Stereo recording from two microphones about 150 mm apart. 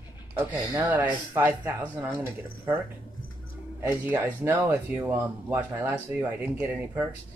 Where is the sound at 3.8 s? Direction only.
15° right (ahead or behind).